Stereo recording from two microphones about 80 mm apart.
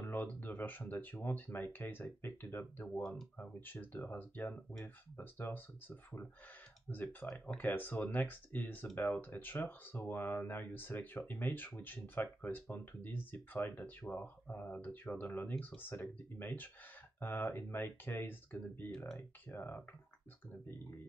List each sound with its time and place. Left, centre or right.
0.0 s speech: left